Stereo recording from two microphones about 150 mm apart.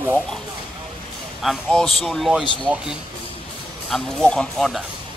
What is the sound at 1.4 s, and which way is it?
Speech, centre (ahead or behind).